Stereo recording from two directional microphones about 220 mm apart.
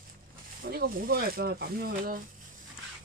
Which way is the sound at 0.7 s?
45° right (ahead or behind).